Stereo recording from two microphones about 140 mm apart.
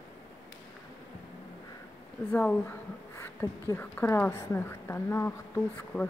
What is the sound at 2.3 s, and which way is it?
A woman's voice, 10° left (ahead or behind).